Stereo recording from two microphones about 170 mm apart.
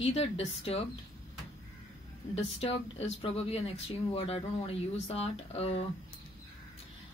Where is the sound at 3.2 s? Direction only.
35° left (ahead or behind).